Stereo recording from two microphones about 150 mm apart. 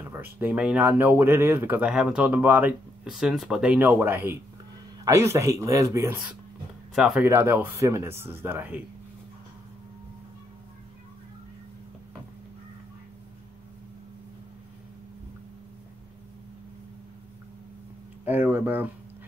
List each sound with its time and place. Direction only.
0.1 s a man's voice: 15° right (ahead or behind)
7.0 s speech: 5° right (ahead or behind)
7.2 s speech: 15° right (ahead or behind)
18.2 s speech: 10° right (ahead or behind)